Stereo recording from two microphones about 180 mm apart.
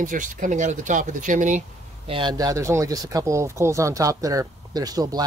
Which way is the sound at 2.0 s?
30° right (ahead or behind).